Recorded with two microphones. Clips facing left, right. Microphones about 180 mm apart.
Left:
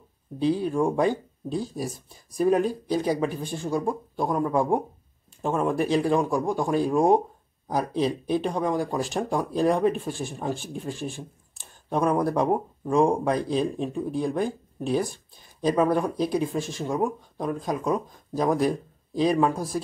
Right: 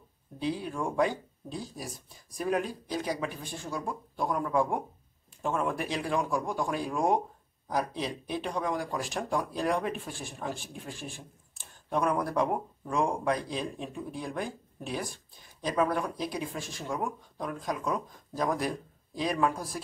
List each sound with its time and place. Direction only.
0.4 s speech: 30° left (ahead or behind)